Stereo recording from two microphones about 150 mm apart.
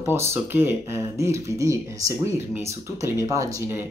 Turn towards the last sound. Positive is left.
turn(degrees=-15)  # may be behind; listen again after turning